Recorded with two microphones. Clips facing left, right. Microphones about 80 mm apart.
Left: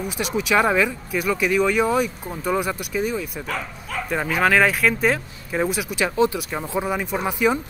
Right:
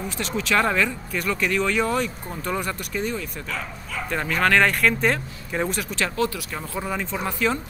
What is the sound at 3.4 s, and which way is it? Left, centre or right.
Speech, left.